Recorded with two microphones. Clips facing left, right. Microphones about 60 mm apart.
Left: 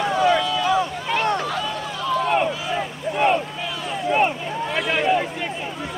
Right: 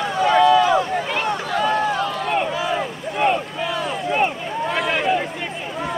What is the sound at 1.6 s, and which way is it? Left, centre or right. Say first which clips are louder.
Run: right 7 dB; right.